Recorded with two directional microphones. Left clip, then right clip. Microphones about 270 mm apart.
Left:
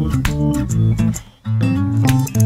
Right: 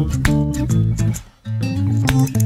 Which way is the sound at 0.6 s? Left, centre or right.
Centre.